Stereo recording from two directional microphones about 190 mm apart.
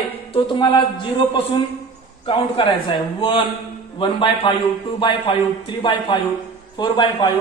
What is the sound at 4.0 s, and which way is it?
Speech, 25° left (ahead or behind).